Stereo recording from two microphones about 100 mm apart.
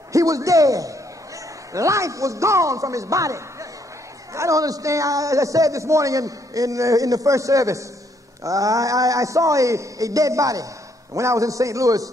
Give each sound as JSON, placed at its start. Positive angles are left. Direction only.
{"t": 0.1, "sound": "a man's voice", "side_deg": -35}